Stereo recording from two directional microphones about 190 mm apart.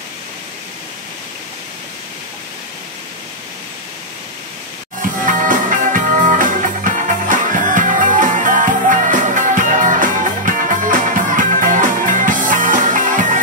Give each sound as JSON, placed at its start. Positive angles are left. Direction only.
{"t": 5.2, "sound": "music", "side_deg": -45}